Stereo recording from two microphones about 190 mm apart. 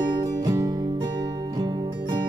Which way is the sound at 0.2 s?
20° right (ahead or behind).